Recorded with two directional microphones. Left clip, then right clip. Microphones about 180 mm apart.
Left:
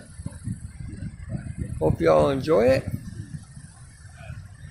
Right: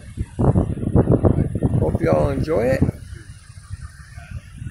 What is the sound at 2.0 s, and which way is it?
Speech, centre (ahead or behind).